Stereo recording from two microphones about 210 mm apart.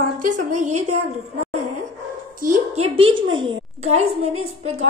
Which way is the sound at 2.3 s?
35° right (ahead or behind).